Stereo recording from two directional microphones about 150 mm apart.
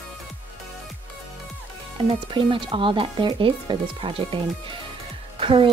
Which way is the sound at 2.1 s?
35° right (ahead or behind).